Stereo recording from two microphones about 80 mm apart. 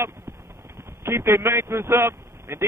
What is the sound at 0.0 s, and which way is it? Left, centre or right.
Clip-clop, right.